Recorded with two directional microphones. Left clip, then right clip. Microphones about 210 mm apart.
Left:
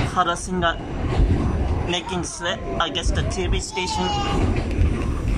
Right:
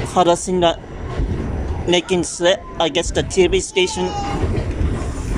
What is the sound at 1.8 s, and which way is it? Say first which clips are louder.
Speech: right 10 dB; 20° right (ahead or behind).